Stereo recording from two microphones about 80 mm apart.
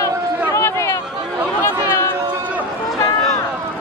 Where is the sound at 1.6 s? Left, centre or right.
Left.